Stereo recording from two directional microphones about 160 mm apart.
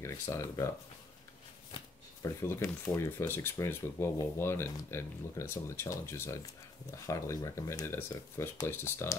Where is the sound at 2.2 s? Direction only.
15° left (ahead or behind).